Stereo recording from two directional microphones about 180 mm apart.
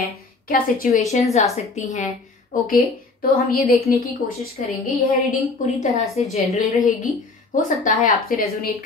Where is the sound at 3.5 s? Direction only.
55° left (ahead or behind).